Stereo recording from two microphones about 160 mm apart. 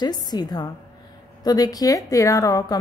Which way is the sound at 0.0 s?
25° left (ahead or behind).